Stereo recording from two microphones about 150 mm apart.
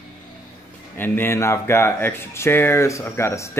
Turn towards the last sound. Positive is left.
turn(degrees=20)  # may be behind; listen again after turning